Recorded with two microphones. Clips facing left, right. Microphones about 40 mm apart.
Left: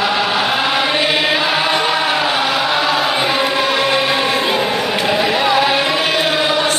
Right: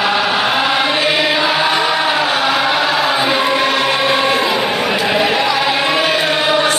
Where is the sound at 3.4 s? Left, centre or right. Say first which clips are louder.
Right 1 dB; right.